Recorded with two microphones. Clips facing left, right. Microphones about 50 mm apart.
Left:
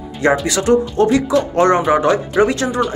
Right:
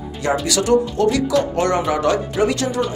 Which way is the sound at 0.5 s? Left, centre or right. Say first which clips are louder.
Left 2 dB; left.